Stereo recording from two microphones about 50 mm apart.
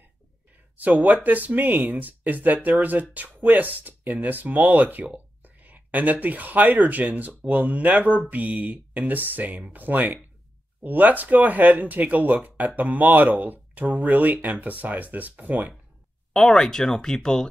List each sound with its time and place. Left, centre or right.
0.7 s speech: right
16.3 s speech: centre